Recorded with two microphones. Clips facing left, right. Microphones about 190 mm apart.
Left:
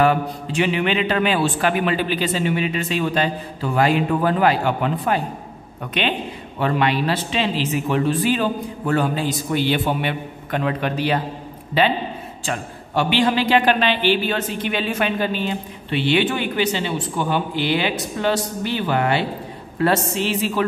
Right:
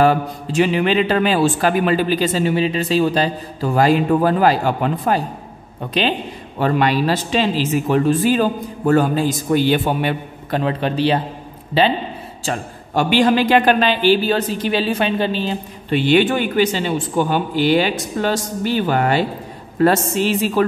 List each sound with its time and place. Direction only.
0.0 s a man's voice: 40° right (ahead or behind)
12.4 s a man's voice: 45° right (ahead or behind)
15.9 s speech: 45° right (ahead or behind)